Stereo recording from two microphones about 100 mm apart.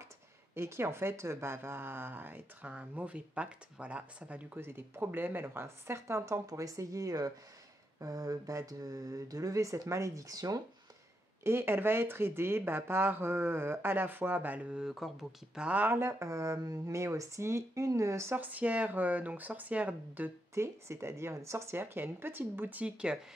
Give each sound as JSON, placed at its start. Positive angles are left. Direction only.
{"t": 0.6, "sound": "speech", "side_deg": -25}
{"t": 11.4, "sound": "speech", "side_deg": -25}
{"t": 20.5, "sound": "speech", "side_deg": -25}